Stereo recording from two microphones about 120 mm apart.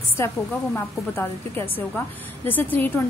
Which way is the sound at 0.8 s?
20° left (ahead or behind).